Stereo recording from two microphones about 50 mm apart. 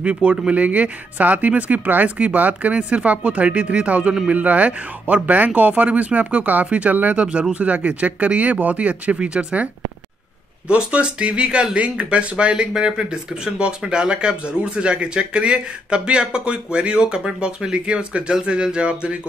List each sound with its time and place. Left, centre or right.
0.0 s speech: right
10.7 s speech: right